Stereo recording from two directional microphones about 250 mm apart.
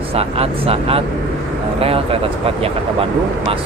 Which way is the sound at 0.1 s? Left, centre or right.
Right.